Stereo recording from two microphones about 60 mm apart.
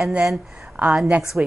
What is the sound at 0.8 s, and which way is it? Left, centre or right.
Speech, right.